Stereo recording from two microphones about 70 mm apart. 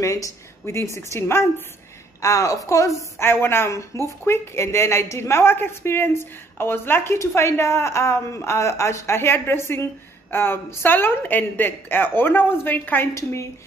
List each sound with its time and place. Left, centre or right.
0.0 s a woman's voice: left
3.2 s a woman's voice: left
13.1 s a woman's voice: left